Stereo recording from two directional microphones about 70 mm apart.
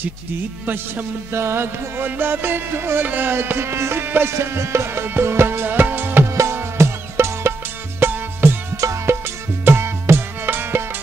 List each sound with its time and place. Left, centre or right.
1.3 s music: right